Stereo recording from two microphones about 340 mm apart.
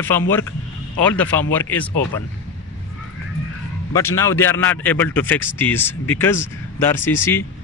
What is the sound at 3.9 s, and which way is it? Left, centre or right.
A man's voice, centre.